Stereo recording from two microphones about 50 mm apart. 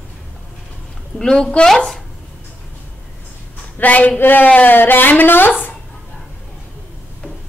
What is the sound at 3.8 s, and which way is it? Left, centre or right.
Speech, left.